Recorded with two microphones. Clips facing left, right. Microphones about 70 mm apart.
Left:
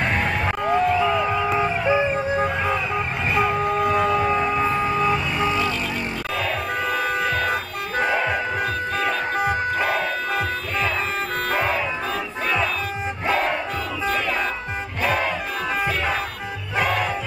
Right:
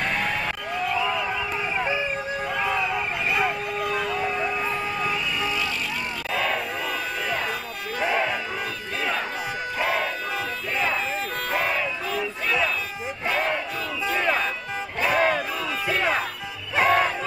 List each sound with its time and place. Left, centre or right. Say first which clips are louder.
0.0 s a sound: left 3 dB; left
1.6 s music: left 5 dB; left
3.8 s a sound: left 5 dB; left
5.4 s vehicle: left 5 dB; left
6.9 s music: left 8 dB; left
16.7 s music: right 3 dB; right